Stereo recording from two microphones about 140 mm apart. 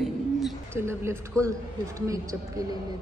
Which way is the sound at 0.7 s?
20° right (ahead or behind).